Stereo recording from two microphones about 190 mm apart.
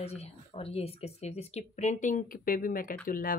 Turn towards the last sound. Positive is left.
turn(degrees=45)  # may be behind; listen again after turning